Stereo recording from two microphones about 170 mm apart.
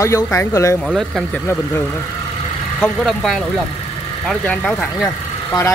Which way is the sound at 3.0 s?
Centre (ahead or behind).